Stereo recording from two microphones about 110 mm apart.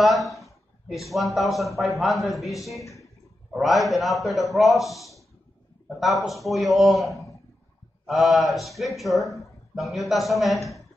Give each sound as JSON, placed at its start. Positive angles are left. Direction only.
{"t": 0.0, "sound": "a man's voice", "side_deg": 0}